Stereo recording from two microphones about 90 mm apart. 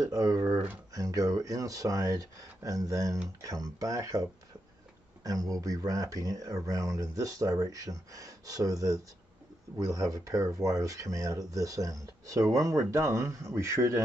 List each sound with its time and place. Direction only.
0.0 s speech: 40° right (ahead or behind)